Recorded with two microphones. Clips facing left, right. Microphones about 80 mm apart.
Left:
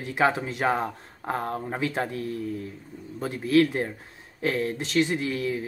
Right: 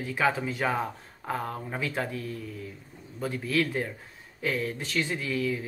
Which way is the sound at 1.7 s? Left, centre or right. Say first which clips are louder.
Left 3 dB; left.